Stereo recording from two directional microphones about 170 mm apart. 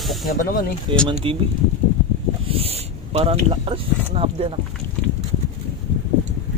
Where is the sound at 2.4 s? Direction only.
35° right (ahead or behind).